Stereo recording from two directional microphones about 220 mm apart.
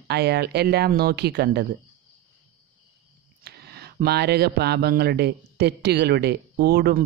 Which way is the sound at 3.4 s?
45° right (ahead or behind).